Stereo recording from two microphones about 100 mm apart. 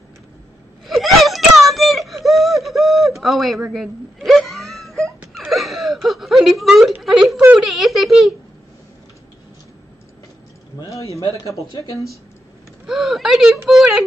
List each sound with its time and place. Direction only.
0.8 s whimper: centre (ahead or behind)
7.5 s speech: centre (ahead or behind)
10.9 s a man's voice: 30° left (ahead or behind)
12.8 s speech: 5° right (ahead or behind)